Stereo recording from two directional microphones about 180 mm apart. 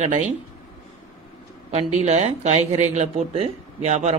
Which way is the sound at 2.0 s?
40° right (ahead or behind).